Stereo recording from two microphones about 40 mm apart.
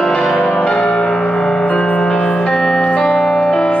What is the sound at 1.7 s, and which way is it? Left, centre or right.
Music, left.